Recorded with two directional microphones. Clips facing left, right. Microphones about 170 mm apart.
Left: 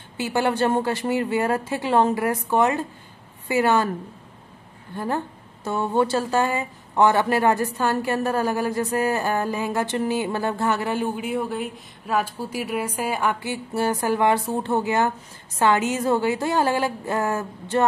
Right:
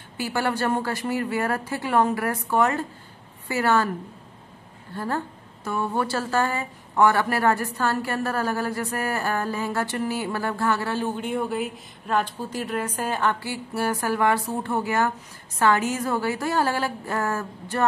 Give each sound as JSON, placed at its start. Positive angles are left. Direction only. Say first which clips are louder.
{"t": 0.2, "sound": "a woman's voice", "louder": "left 3 dB", "side_deg": 20}
{"t": 4.9, "sound": "a woman's voice", "louder": "left 2 dB", "side_deg": 15}